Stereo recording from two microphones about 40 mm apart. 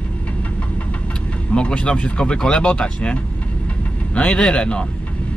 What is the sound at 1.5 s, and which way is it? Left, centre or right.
Speech, left.